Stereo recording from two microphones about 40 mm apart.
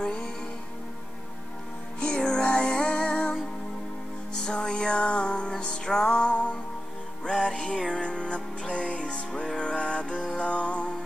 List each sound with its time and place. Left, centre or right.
0.0 s music: centre
2.0 s music: left
4.4 s music: centre
7.2 s music: centre